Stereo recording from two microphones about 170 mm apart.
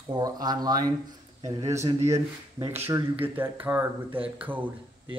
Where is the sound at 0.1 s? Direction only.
25° right (ahead or behind).